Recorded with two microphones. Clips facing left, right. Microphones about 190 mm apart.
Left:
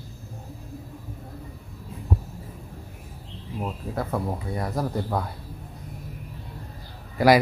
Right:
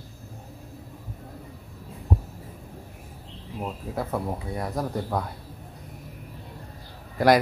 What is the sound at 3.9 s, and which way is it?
Speech, centre (ahead or behind).